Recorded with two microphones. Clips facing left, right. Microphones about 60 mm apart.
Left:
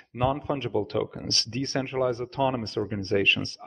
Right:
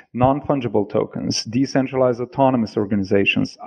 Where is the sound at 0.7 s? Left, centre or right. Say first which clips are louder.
Right 8 dB; right.